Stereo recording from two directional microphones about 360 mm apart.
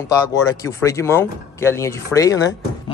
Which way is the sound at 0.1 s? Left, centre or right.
Centre.